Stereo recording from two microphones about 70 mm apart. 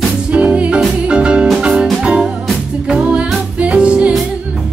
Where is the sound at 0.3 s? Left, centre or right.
Centre.